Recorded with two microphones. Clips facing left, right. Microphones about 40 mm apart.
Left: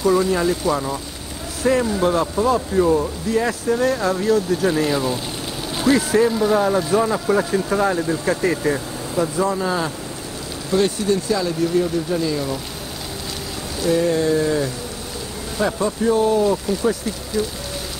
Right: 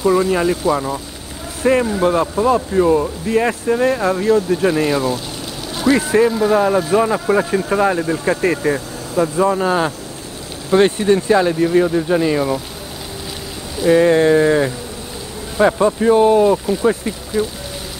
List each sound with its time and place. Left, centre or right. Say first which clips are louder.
0.0 s speech: right 3 dB; right
1.6 s speech: right 3 dB; right
1.9 s speech: right 3 dB; centre
2.1 s speech: right 3 dB; right
3.3 s speech: right 3 dB; right
5.9 s speech: right 3 dB; right
6.2 s speech: right 3 dB; centre
8.4 s speech: right 3 dB; right
13.8 s speech: right 6 dB; right